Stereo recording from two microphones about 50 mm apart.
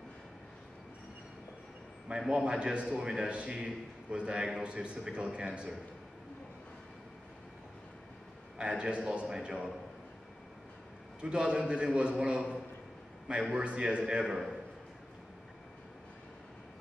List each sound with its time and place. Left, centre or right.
2.0 s a man's voice: centre
8.5 s a man's voice: centre
11.1 s a man's voice: right
14.3 s a man's voice: centre